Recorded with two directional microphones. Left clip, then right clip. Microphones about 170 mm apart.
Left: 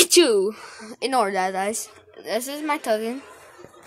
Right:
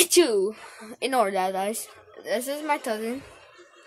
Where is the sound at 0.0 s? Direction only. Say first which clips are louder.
Left 4 dB; 15° left (ahead or behind).